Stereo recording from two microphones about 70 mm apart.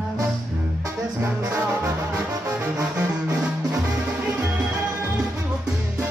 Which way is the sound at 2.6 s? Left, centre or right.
Centre.